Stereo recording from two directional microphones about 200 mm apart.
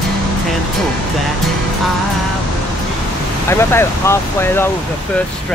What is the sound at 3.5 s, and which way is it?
Speech, 10° left (ahead or behind).